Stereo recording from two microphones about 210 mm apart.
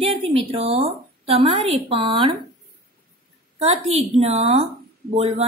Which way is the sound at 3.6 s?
30° right (ahead or behind).